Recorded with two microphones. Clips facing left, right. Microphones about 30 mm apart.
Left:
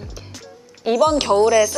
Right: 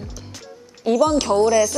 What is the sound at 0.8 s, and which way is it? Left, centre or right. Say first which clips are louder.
Speech: left 1 dB; centre.